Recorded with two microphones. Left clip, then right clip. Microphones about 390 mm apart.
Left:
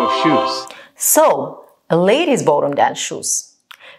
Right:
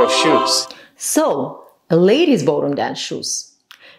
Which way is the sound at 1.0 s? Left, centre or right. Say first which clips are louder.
Left 4 dB; left.